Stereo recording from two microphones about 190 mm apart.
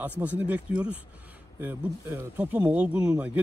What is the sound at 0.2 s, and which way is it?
Speech, 10° right (ahead or behind).